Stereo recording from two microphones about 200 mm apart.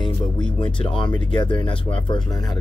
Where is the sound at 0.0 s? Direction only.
25° left (ahead or behind).